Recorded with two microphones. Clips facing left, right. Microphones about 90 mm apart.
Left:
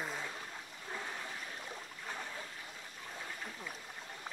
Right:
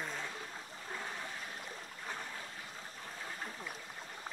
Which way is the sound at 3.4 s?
Centre (ahead or behind).